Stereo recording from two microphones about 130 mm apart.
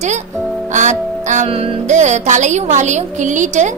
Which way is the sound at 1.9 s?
65° right (ahead or behind).